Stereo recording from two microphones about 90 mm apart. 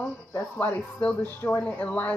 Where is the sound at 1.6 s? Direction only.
15° left (ahead or behind).